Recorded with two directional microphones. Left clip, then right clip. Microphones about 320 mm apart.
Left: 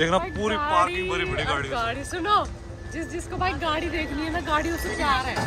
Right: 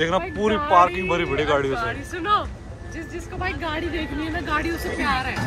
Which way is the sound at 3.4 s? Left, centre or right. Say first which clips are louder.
Left 1 dB; left.